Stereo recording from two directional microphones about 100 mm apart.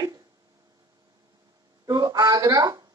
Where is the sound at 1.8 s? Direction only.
40° right (ahead or behind).